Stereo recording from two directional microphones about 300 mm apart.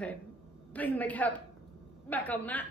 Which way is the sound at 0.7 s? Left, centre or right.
Centre.